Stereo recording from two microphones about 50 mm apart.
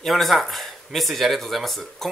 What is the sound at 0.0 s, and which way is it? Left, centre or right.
Speech, centre.